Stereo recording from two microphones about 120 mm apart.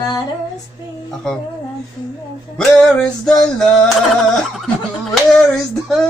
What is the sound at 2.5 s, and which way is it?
Music, 5° left (ahead or behind).